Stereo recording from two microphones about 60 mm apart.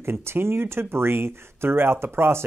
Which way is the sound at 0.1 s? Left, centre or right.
Right.